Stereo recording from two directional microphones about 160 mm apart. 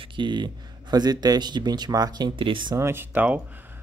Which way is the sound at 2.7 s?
15° right (ahead or behind).